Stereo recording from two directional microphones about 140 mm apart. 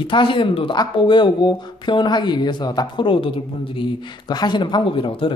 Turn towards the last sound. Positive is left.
turn(degrees=35)  # may be behind; listen again after turning